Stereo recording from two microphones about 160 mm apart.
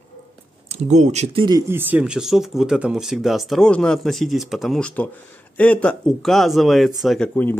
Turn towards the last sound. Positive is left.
turn(degrees=10)  # may be behind; listen again after turning